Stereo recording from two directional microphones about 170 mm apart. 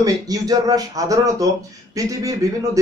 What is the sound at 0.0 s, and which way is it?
A man's voice, 20° right (ahead or behind).